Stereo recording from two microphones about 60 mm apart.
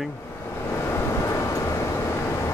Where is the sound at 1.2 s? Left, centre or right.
Left.